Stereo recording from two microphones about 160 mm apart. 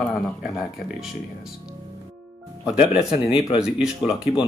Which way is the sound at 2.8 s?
35° left (ahead or behind).